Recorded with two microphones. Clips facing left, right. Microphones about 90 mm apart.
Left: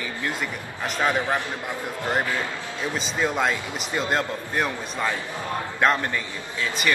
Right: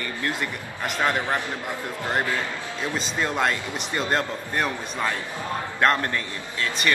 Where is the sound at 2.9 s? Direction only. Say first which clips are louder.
Left 2 dB; 5° left (ahead or behind).